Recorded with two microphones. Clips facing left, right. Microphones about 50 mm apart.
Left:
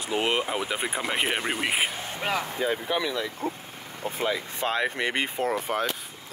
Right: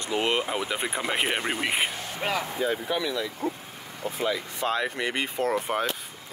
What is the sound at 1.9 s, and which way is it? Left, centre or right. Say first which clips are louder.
Speech: even; centre.